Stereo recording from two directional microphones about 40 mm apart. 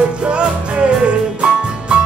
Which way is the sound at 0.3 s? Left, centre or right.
Right.